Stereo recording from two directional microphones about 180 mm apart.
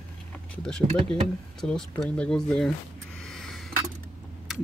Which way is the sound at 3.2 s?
5° left (ahead or behind).